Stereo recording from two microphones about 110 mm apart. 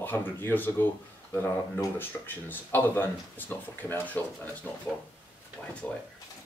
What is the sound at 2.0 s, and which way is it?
Speech, 20° left (ahead or behind).